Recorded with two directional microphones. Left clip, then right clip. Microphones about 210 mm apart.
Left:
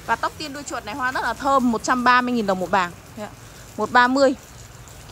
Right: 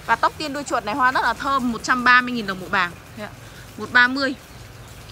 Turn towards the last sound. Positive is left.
turn(degrees=25)  # may be behind; listen again after turning